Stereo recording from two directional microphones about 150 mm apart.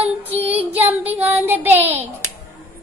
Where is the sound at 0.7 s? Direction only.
10° right (ahead or behind).